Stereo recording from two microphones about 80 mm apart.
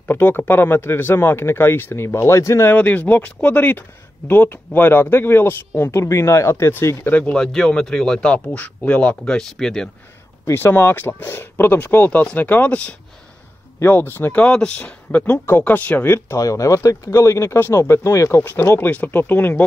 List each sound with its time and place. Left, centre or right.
0.1 s speech: left
2.7 s speech: left
7.1 s a man's voice: centre
10.4 s speech: left
13.7 s speech: left
14.3 s a man's voice: centre
16.3 s speech: left